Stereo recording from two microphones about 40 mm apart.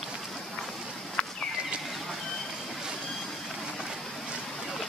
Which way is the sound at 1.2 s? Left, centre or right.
Left.